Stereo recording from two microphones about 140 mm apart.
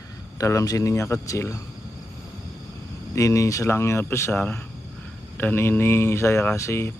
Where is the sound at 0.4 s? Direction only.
25° left (ahead or behind).